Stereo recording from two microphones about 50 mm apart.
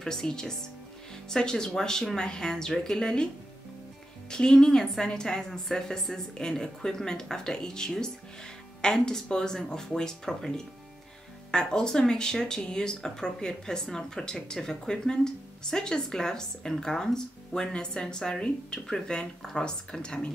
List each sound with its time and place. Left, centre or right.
0.0 s speech: centre
4.3 s speech: centre